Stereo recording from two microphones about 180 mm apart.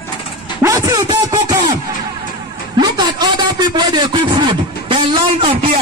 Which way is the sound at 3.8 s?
25° right (ahead or behind).